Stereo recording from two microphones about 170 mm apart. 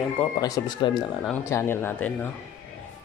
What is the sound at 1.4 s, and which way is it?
Speech, 15° left (ahead or behind).